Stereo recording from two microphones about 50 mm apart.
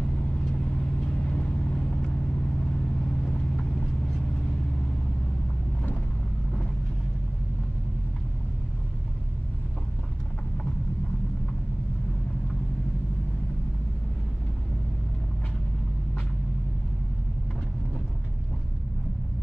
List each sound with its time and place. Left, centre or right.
1.0 s vehicle: left